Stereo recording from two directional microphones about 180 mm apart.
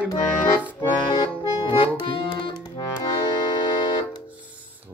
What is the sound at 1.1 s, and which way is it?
Accordion, 30° left (ahead or behind).